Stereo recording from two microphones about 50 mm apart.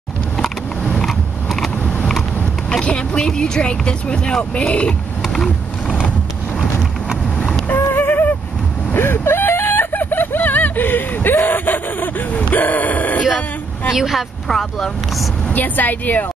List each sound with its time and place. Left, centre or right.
1.0 s biting: centre
1.8 s mechanisms: left
2.7 s speech: centre
5.3 s vehicle: centre
7.2 s vehicle: centre
7.8 s a sound: left
8.9 s a sound: left
13.9 s a woman's voice: centre
14.5 s speech: centre
15.5 s speech: left